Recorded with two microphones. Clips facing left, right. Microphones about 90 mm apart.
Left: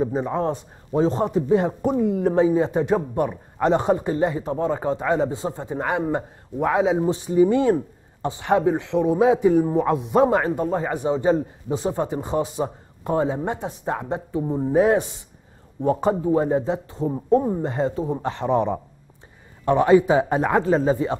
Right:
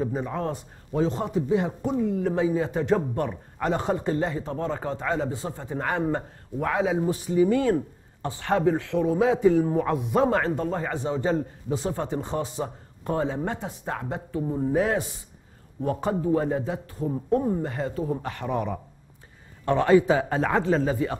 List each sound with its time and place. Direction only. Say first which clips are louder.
0.0 s a man's voice: left 5 dB; 20° left (ahead or behind)
1.0 s a man's voice: left 5 dB; 35° left (ahead or behind); by 20.6 s 15° left (ahead or behind)
20.7 s a man's voice: left 4 dB; 25° left (ahead or behind)